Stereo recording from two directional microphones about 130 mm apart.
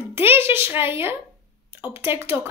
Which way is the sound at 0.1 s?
15° right (ahead or behind).